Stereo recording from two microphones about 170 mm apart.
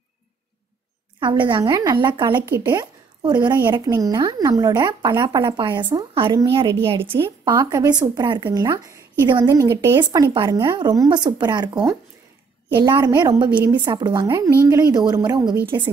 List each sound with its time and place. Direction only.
1.2 s speech: 25° right (ahead or behind)
7.2 s speech: 15° right (ahead or behind)
12.7 s speech: 25° right (ahead or behind)